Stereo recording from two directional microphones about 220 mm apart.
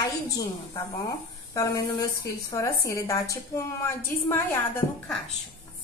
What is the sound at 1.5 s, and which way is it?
A woman's voice, 15° left (ahead or behind).